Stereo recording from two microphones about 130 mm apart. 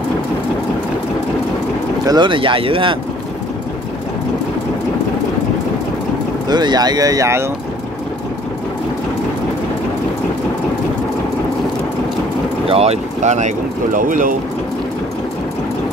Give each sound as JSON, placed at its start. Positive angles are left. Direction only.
{"t": 2.0, "sound": "speech", "side_deg": -35}
{"t": 6.5, "sound": "speech", "side_deg": -35}
{"t": 12.6, "sound": "speech", "side_deg": -50}
{"t": 13.9, "sound": "speech", "side_deg": -90}